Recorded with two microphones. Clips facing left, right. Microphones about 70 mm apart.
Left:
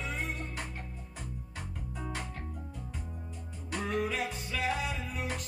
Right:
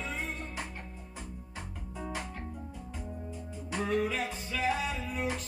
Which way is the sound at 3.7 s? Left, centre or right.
Centre.